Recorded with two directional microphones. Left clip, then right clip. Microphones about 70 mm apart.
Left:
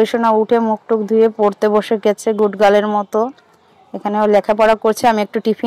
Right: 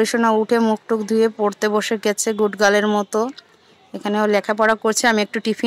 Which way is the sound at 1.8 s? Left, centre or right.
Centre.